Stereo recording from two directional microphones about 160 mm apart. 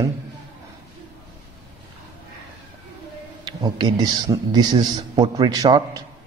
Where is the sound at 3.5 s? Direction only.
25° right (ahead or behind).